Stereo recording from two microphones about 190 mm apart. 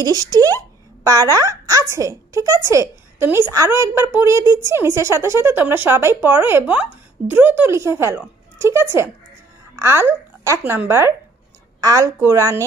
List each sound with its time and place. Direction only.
0.0 s a woman's voice: 20° right (ahead or behind)